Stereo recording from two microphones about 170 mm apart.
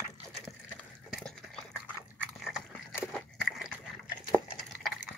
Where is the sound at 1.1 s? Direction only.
Centre (ahead or behind).